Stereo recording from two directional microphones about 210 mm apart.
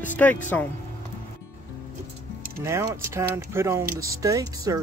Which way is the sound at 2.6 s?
15° right (ahead or behind).